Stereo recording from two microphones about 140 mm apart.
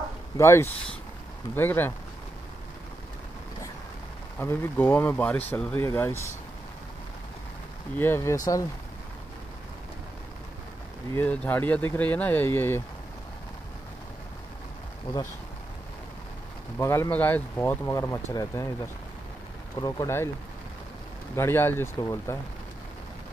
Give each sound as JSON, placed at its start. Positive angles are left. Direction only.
{"t": 0.4, "sound": "speech", "side_deg": 20}
{"t": 4.4, "sound": "speech", "side_deg": 15}
{"t": 8.0, "sound": "speech", "side_deg": 20}
{"t": 11.1, "sound": "speech", "side_deg": 10}
{"t": 16.7, "sound": "speech", "side_deg": 20}
{"t": 19.8, "sound": "speech", "side_deg": 20}
{"t": 21.4, "sound": "speech", "side_deg": 15}